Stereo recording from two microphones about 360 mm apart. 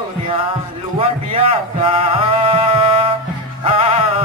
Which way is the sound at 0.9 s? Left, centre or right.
Centre.